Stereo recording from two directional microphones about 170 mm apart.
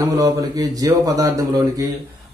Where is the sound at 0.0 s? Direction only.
20° right (ahead or behind).